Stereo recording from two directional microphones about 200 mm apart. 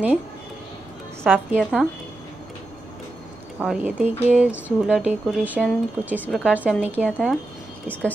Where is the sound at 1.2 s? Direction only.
5° right (ahead or behind).